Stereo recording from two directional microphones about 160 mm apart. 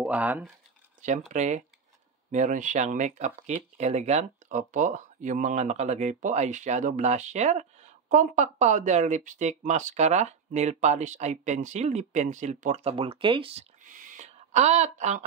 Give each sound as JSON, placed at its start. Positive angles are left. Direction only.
{"t": 0.0, "sound": "speech", "side_deg": -10}
{"t": 1.3, "sound": "speech", "side_deg": -45}
{"t": 12.9, "sound": "speech", "side_deg": -35}
{"t": 13.8, "sound": "a sound", "side_deg": -55}